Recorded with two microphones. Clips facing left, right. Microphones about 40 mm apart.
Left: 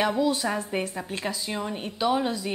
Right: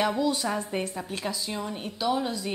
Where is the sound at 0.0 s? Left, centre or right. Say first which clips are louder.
Left 2 dB; centre.